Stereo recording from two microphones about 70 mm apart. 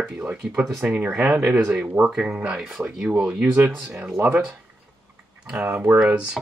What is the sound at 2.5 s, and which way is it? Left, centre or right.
Speech, centre.